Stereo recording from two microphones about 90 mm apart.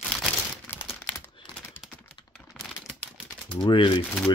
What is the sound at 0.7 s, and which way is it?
Crumpling, 20° left (ahead or behind).